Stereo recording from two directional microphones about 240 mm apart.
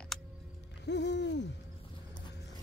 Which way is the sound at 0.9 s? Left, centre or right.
Left.